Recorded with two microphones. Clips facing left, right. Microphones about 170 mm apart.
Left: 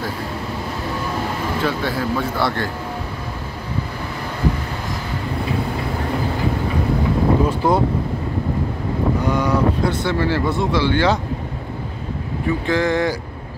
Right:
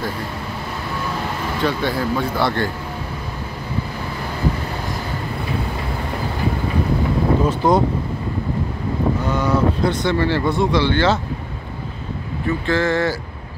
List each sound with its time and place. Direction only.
1.6 s speech: centre (ahead or behind)
7.4 s speech: 5° left (ahead or behind)
9.3 s speech: 10° left (ahead or behind)
12.6 s speech: 15° left (ahead or behind)